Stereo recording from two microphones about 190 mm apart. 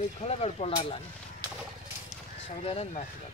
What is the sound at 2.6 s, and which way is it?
Speech, 30° left (ahead or behind).